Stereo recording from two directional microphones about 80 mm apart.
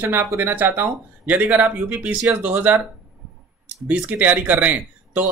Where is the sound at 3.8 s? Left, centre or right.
Centre.